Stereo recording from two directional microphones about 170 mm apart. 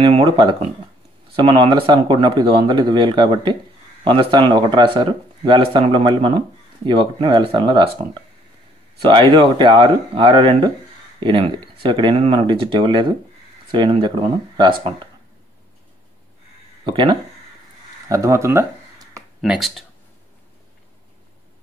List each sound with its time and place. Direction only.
0.0 s speech: 30° right (ahead or behind)
16.8 s speech: 25° right (ahead or behind)
19.4 s speech: 5° right (ahead or behind)